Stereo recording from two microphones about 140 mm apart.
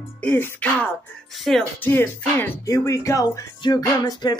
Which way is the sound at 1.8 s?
15° left (ahead or behind).